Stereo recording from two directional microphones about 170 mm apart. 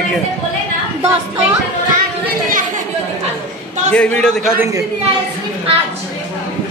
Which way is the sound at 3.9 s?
5° left (ahead or behind).